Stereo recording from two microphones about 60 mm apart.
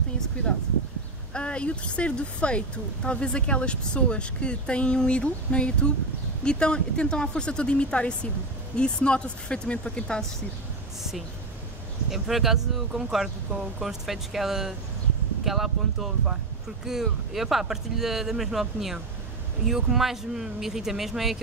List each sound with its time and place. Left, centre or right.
1.3 s speech: centre
12.1 s speech: centre